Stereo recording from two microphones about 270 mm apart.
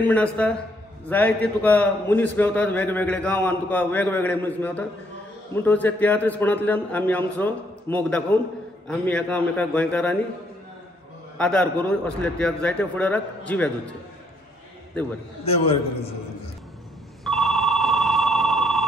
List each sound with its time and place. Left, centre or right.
0.0 s a man's voice: centre
11.3 s a man's voice: centre
15.4 s a man's voice: left
17.2 s telephone bell ringing: centre